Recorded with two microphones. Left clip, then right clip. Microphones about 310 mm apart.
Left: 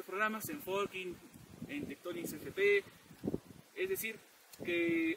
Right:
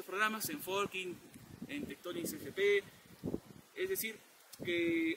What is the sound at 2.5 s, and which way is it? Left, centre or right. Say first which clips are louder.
Speech: left 1 dB; centre.